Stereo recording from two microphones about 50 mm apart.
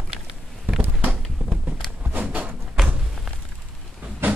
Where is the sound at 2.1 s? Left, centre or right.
Right.